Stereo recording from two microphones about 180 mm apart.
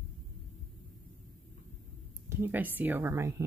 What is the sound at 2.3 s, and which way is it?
Speech, 10° right (ahead or behind).